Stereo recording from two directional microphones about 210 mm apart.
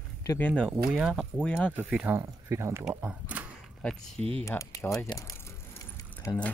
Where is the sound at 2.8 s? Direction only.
Centre (ahead or behind).